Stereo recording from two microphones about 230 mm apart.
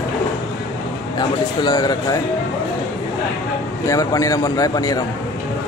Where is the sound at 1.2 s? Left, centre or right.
Centre.